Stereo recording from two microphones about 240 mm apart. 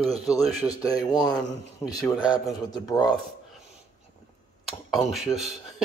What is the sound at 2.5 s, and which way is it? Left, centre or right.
Speech, centre.